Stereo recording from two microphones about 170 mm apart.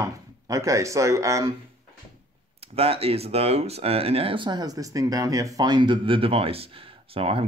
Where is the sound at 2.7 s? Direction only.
35° right (ahead or behind).